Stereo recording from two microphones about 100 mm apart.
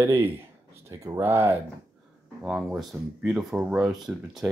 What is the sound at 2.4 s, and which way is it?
Speech, 5° right (ahead or behind).